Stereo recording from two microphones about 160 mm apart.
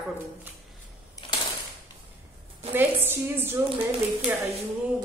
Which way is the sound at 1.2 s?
20° left (ahead or behind).